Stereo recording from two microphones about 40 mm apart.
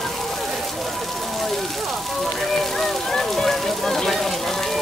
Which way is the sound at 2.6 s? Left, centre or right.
Centre.